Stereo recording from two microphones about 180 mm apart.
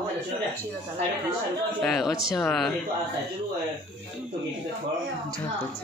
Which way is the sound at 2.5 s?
Centre (ahead or behind).